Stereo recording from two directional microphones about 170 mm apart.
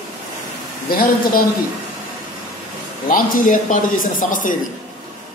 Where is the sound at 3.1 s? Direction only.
50° left (ahead or behind).